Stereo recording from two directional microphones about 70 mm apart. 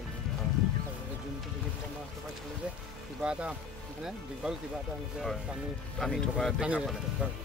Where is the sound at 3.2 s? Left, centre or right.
Centre.